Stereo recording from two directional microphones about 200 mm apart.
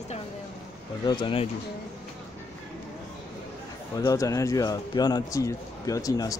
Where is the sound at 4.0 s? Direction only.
15° left (ahead or behind).